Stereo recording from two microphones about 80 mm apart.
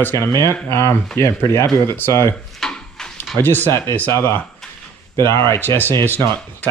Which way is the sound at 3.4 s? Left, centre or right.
Left.